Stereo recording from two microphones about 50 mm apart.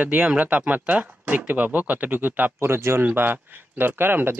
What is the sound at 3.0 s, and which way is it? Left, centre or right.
Speech, right.